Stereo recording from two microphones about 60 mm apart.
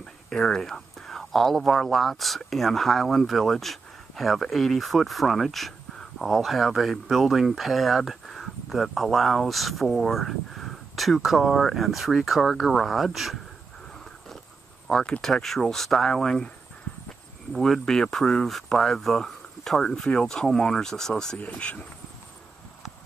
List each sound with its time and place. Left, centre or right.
0.0 s speech: centre
14.9 s speech: centre
17.5 s speech: centre
21.4 s speech: left